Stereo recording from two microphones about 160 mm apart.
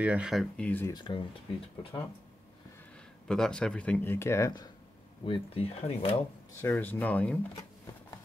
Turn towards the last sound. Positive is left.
turn(degrees=10)  # may be behind; listen again after turning